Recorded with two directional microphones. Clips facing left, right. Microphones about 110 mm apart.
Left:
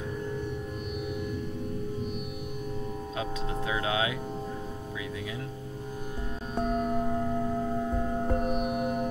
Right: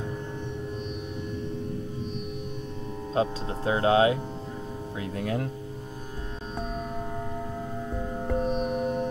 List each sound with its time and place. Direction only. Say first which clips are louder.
3.2 s speech: right 7 dB; 35° right (ahead or behind)
5.2 s speech: right 7 dB; 55° right (ahead or behind)